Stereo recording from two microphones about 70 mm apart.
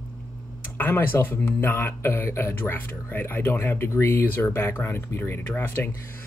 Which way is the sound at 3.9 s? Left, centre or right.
Left.